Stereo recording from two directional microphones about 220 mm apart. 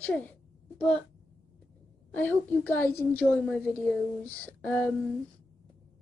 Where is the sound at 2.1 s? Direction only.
5° left (ahead or behind).